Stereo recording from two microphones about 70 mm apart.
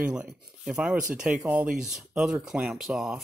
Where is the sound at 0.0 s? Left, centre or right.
Centre.